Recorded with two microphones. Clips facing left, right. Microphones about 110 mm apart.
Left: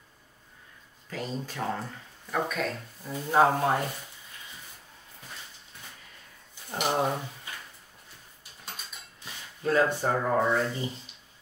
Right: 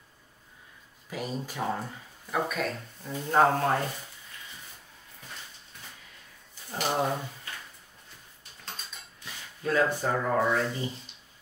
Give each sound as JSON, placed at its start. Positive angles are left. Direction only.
{"t": 1.1, "sound": "speech", "side_deg": -10}
{"t": 6.7, "sound": "speech", "side_deg": 15}
{"t": 9.2, "sound": "a sound", "side_deg": 30}
{"t": 10.0, "sound": "speech", "side_deg": 5}